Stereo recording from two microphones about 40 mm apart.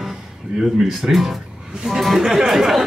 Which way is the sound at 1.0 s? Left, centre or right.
Centre.